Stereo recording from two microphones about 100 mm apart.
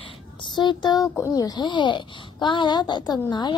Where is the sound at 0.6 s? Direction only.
45° left (ahead or behind).